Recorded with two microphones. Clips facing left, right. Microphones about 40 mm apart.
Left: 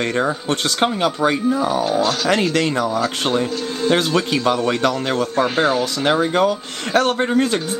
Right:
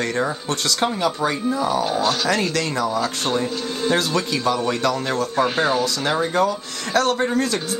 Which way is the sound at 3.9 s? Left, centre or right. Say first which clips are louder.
Left 4 dB; left.